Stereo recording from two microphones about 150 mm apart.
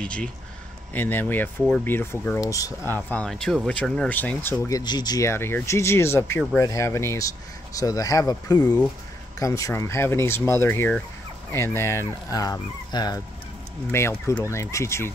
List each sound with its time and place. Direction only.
0.0 s speech: 10° left (ahead or behind)